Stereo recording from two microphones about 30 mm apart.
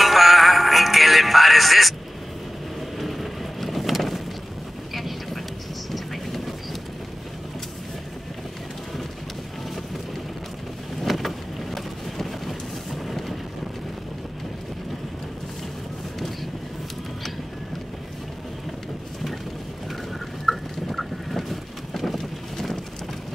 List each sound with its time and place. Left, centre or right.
0.0 s music: centre
3.0 s vehicle: centre
11.0 s boat: centre
20.4 s boat: centre